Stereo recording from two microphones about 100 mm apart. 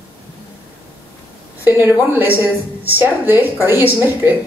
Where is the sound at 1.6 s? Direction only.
20° right (ahead or behind).